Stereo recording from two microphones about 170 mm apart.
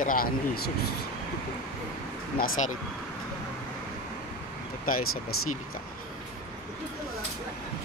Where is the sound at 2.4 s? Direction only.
50° left (ahead or behind).